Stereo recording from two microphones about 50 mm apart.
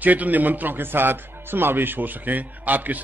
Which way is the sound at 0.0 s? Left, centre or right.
Right.